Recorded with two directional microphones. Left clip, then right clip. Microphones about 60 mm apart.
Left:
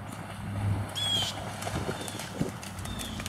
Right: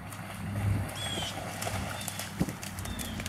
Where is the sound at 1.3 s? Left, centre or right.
Right.